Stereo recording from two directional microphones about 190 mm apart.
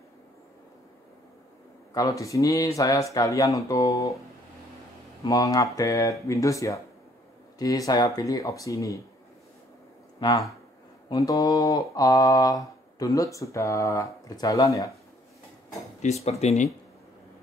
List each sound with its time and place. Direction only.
2.0 s speech: 15° left (ahead or behind)
5.2 s speech: 20° left (ahead or behind)
11.1 s speech: 20° left (ahead or behind)
16.3 s speech: 35° left (ahead or behind)